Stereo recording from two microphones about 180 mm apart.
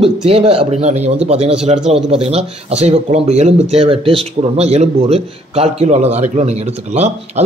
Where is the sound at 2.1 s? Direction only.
35° right (ahead or behind).